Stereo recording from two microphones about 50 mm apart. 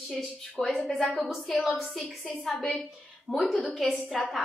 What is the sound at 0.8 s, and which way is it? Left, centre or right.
Speech, centre.